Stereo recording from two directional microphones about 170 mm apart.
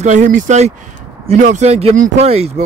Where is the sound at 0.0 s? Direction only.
45° right (ahead or behind).